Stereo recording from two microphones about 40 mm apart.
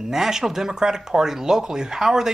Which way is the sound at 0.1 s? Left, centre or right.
Centre.